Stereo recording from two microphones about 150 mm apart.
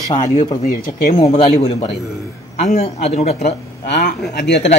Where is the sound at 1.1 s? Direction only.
45° left (ahead or behind).